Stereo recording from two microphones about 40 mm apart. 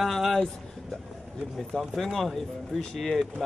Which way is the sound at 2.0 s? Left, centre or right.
Centre.